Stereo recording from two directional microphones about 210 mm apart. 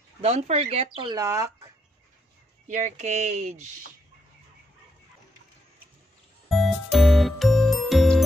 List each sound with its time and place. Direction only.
0.2 s speech: 30° right (ahead or behind); by 1.7 s 15° right (ahead or behind)
2.7 s speech: 35° right (ahead or behind)
6.5 s music: centre (ahead or behind)